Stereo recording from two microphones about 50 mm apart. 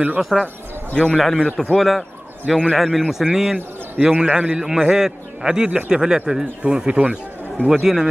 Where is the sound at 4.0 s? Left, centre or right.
Right.